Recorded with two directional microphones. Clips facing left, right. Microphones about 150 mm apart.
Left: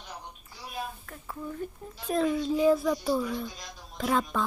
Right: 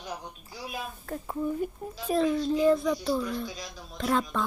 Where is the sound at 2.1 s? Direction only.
5° left (ahead or behind).